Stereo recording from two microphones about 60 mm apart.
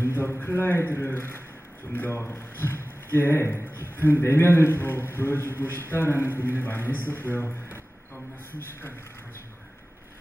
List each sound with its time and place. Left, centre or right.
0.0 s a sound: left
0.3 s a man's voice: left
2.1 s a man's voice: left
6.2 s a man's voice: right
6.6 s a man's voice: left
7.3 s speech: left